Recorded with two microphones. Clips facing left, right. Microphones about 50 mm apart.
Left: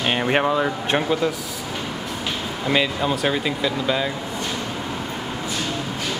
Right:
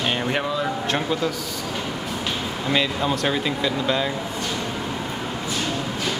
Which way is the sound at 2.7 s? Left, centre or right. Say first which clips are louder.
Left 1 dB; centre.